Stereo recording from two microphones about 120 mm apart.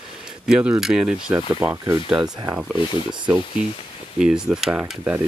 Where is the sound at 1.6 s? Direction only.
20° right (ahead or behind).